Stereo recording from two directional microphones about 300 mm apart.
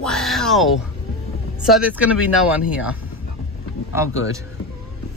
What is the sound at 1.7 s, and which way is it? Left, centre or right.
Speech, centre.